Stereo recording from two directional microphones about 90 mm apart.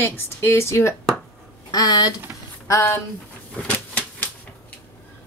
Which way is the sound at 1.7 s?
45° left (ahead or behind).